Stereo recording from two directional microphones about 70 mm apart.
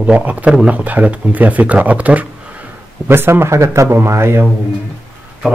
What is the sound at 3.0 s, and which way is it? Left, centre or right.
Speech, right.